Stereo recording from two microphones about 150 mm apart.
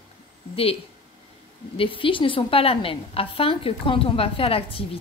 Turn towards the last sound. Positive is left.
turn(degrees=40)  # may be behind; listen again after turning